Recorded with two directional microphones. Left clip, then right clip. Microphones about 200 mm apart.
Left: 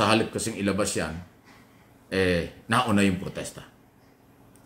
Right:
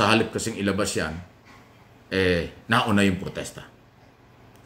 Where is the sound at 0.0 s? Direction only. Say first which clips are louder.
Right 2 dB; 5° right (ahead or behind).